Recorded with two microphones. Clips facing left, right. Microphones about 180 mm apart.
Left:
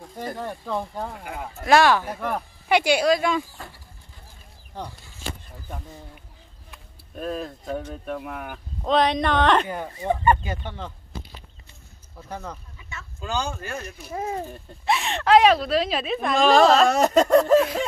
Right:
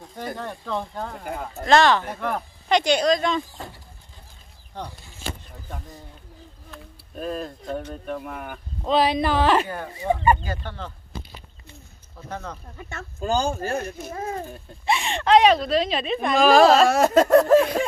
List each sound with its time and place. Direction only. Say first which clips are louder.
0.2 s speech: left 1 dB; 5° left (ahead or behind)
7.2 s speech: even; centre (ahead or behind)
10.4 s speech: even; 20° left (ahead or behind)
12.3 s speech: right 1 dB; 10° left (ahead or behind)
12.6 s speech: right 6 dB; 50° right (ahead or behind); by 13.9 s 30° right (ahead or behind)
14.5 s speech: even; centre (ahead or behind)